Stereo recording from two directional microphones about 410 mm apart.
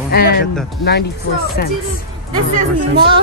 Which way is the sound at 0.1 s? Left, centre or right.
Left.